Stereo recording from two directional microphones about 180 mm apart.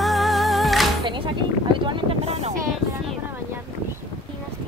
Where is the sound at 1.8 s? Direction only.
30° right (ahead or behind).